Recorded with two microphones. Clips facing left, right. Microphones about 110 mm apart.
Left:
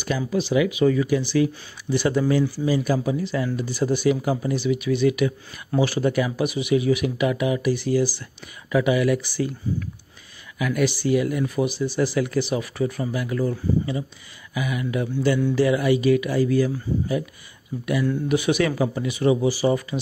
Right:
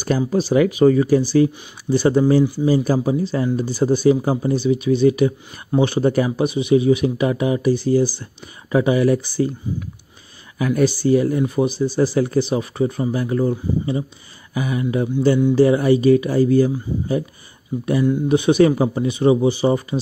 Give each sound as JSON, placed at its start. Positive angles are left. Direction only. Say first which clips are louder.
{"t": 0.3, "sound": "speech", "louder": "right 3 dB", "side_deg": -40}
{"t": 10.6, "sound": "speech", "louder": "right 5 dB", "side_deg": -35}
{"t": 18.3, "sound": "speech", "louder": "right 8 dB", "side_deg": -30}